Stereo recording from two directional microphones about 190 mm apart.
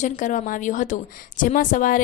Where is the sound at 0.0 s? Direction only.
40° left (ahead or behind).